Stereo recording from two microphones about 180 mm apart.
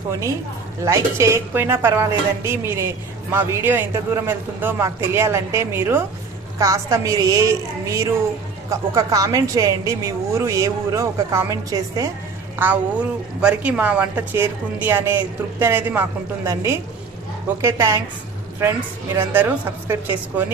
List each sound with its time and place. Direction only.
0.8 s a woman's voice: 15° right (ahead or behind)